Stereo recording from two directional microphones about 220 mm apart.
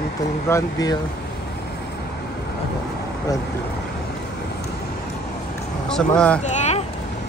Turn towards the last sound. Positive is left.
turn(degrees=30)  # may be behind; listen again after turning